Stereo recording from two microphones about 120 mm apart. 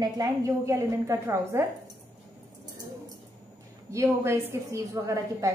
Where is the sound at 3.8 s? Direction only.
25° right (ahead or behind).